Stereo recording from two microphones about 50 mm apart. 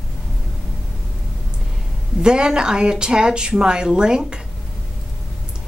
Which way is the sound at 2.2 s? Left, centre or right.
Centre.